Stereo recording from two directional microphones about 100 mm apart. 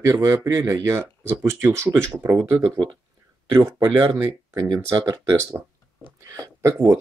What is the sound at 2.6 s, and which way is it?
Speech, 50° right (ahead or behind).